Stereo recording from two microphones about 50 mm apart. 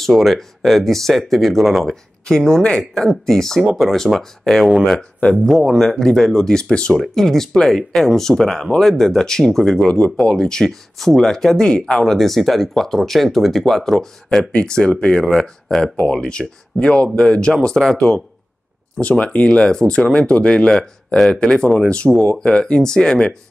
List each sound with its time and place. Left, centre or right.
0.0 s speech: centre
5.3 s speech: centre
5.8 s speech: centre
14.5 s speech: centre